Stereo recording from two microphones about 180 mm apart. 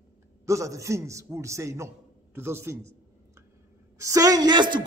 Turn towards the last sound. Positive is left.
turn(degrees=-25)  # may be behind; listen again after turning